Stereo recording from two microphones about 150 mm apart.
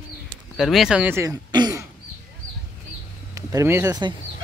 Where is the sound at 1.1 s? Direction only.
20° right (ahead or behind).